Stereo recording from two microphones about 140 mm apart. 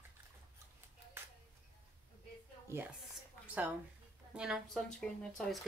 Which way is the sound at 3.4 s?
10° right (ahead or behind).